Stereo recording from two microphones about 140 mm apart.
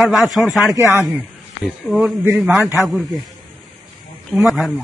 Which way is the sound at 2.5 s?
15° right (ahead or behind).